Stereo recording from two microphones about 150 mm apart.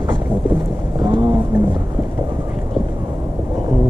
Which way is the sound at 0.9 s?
30° right (ahead or behind).